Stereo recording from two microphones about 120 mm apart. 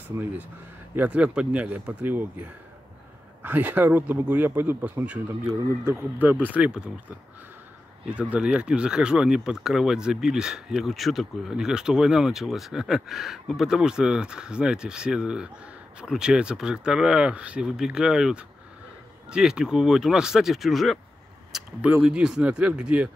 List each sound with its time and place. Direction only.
0.9 s a man's voice: 10° right (ahead or behind)
8.1 s speech: 10° right (ahead or behind)
21.5 s a sound: 5° right (ahead or behind)
22.0 s speech: 5° right (ahead or behind)